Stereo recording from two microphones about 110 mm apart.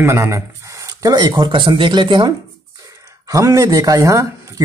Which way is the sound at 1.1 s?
40° right (ahead or behind).